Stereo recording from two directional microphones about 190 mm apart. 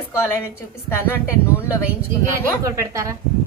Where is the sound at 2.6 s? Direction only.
15° right (ahead or behind).